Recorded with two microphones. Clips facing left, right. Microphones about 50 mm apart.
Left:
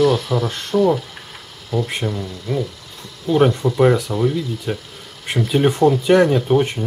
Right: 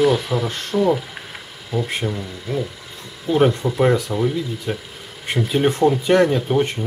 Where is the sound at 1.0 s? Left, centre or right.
Centre.